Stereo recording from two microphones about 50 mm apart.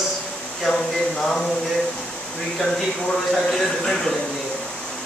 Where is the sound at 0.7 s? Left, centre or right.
Centre.